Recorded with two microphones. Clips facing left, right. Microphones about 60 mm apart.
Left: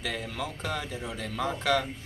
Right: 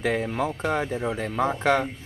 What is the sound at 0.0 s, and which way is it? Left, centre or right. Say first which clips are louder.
Speech: right 9 dB; right.